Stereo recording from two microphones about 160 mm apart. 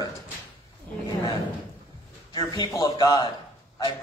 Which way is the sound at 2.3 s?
30° left (ahead or behind).